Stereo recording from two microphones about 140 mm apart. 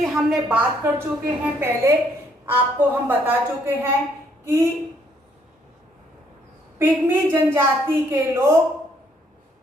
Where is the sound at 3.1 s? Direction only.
15° right (ahead or behind).